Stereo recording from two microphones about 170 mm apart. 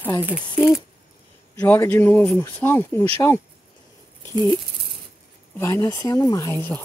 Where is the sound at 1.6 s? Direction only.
10° left (ahead or behind).